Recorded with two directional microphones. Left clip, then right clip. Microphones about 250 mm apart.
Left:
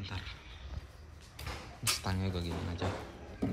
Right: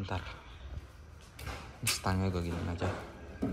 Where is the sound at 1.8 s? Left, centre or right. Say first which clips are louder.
Right 2 dB; centre.